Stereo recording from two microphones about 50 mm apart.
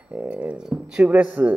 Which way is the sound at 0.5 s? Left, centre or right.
Centre.